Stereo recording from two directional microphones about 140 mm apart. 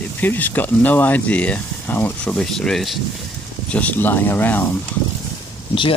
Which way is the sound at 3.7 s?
10° left (ahead or behind).